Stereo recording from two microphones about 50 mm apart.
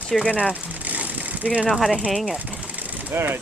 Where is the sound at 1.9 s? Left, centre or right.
Centre.